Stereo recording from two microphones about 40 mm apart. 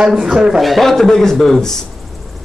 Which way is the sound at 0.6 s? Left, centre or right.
Centre.